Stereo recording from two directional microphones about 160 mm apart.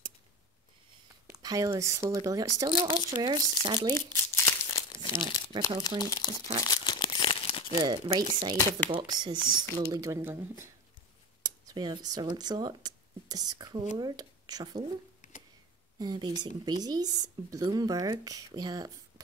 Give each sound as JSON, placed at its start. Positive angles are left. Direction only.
{"t": 1.2, "sound": "speech", "side_deg": -20}
{"t": 3.9, "sound": "crumpling", "side_deg": 20}
{"t": 5.0, "sound": "speech", "side_deg": 30}
{"t": 6.6, "sound": "crumpling", "side_deg": 25}
{"t": 7.7, "sound": "speech", "side_deg": -20}
{"t": 8.5, "sound": "speech", "side_deg": 15}
{"t": 8.9, "sound": "speech", "side_deg": -25}
{"t": 11.4, "sound": "speech", "side_deg": -25}
{"t": 15.2, "sound": "a sound", "side_deg": 50}
{"t": 16.0, "sound": "speech", "side_deg": -25}